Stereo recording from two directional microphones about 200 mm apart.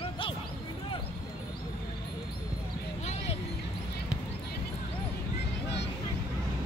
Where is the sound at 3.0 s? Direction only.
35° left (ahead or behind).